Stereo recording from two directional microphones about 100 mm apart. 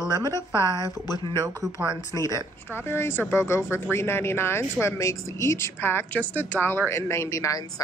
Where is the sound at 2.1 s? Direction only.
35° left (ahead or behind).